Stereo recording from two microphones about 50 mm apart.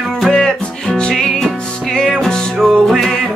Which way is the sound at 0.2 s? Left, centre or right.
Centre.